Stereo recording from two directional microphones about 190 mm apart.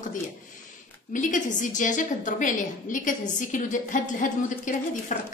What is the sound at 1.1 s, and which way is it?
A woman's voice, 45° left (ahead or behind).